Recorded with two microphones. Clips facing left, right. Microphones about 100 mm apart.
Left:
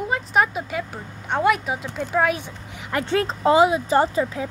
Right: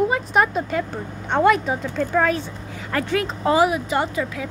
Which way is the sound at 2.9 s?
30° left (ahead or behind).